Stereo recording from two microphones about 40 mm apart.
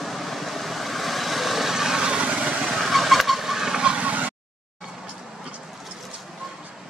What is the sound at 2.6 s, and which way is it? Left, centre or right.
Fowl, centre.